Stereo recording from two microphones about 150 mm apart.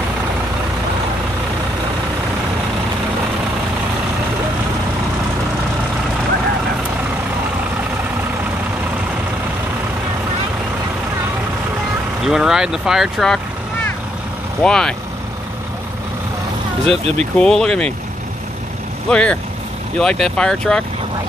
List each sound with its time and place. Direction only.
12.3 s speech: 5° right (ahead or behind)
14.6 s speech: 5° left (ahead or behind)
16.8 s speech: 40° right (ahead or behind)
17.2 s speech: 5° left (ahead or behind)
19.0 s speech: 5° left (ahead or behind)